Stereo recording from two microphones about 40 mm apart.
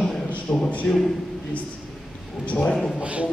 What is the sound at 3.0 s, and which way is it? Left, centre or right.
Speech, right.